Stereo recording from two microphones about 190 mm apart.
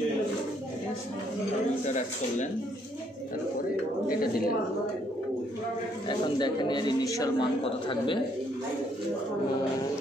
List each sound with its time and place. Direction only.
1.9 s speech: 40° left (ahead or behind)
6.0 s speech: 25° left (ahead or behind)